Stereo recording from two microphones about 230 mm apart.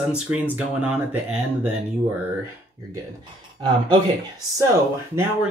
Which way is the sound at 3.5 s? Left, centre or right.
Centre.